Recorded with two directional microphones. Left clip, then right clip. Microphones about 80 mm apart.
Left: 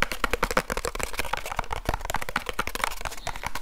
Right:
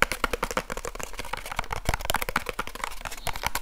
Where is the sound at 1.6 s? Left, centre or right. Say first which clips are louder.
Even; right.